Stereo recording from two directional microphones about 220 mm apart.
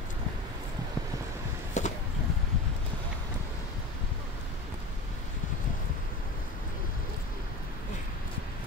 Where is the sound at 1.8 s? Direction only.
35° left (ahead or behind).